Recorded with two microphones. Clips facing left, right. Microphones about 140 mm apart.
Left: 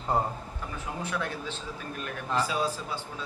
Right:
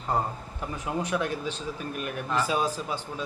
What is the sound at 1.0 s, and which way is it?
Speech, 15° right (ahead or behind).